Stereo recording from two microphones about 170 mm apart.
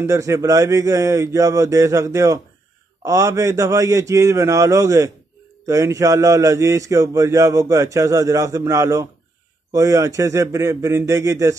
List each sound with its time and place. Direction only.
0.0 s a man's voice: 15° right (ahead or behind)